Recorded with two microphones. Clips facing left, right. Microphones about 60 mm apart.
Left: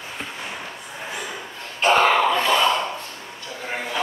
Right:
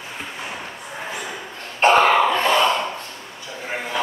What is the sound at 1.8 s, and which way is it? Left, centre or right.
Cough, right.